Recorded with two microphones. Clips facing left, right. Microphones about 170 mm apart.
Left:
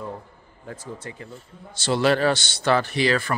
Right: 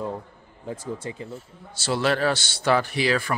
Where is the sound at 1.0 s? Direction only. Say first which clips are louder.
Right 4 dB; 20° right (ahead or behind).